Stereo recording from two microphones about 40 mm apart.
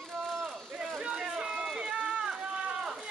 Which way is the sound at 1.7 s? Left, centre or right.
Centre.